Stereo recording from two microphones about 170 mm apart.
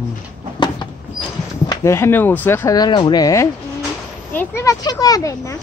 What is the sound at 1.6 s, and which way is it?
Speech, 15° left (ahead or behind).